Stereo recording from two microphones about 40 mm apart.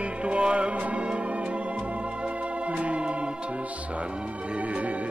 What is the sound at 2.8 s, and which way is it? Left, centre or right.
Organ, right.